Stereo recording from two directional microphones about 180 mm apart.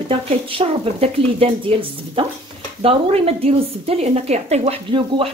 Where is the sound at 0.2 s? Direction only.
30° right (ahead or behind).